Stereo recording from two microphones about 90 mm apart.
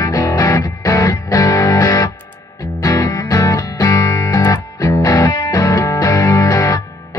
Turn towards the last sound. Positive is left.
turn(degrees=40)  # may be behind; listen again after turning